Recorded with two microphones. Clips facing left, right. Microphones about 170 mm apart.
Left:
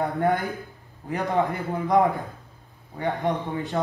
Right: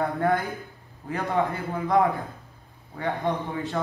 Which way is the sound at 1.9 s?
20° left (ahead or behind).